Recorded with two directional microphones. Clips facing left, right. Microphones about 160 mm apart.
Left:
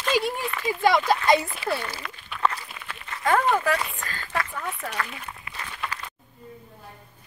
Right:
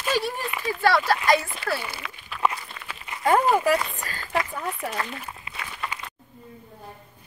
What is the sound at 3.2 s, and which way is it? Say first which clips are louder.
Speech: right 2 dB; 25° right (ahead or behind).